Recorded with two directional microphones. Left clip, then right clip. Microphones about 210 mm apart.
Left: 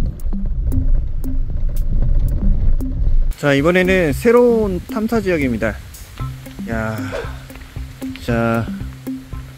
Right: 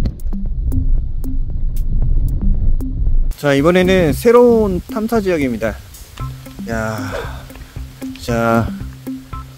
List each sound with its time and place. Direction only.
0.3 s music: centre (ahead or behind)
2.8 s a sound: centre (ahead or behind)
3.3 s speech: 10° right (ahead or behind)
8.3 s speech: 20° right (ahead or behind)
9.1 s music: centre (ahead or behind)